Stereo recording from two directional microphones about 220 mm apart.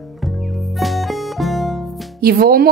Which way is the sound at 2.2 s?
45° right (ahead or behind).